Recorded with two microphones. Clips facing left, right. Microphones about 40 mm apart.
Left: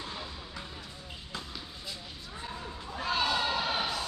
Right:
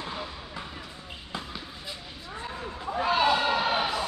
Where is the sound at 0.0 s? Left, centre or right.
Right.